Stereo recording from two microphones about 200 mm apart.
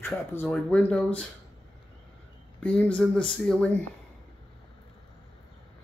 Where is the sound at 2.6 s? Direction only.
5° left (ahead or behind).